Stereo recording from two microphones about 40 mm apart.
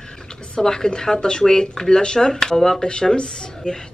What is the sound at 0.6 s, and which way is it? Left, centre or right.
Speech, centre.